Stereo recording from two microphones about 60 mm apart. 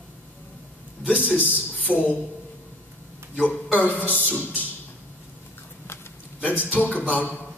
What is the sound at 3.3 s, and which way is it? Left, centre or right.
A man's voice, left.